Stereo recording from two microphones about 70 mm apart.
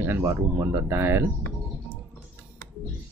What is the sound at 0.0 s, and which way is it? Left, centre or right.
Speech, right.